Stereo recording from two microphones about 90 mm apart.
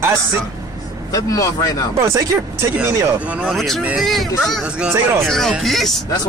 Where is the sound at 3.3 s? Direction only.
10° right (ahead or behind).